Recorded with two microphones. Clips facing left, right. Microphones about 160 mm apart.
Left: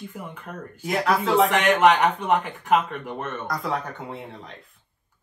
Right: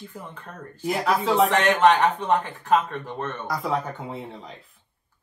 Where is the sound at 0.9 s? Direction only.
5° right (ahead or behind).